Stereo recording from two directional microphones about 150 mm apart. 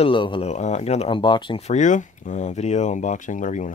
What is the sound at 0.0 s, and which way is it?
Speech, 35° left (ahead or behind).